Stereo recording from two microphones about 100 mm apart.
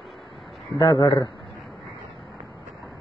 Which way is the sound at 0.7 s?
35° left (ahead or behind).